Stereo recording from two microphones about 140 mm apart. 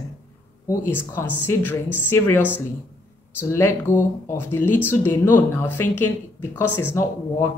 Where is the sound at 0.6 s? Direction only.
15° left (ahead or behind).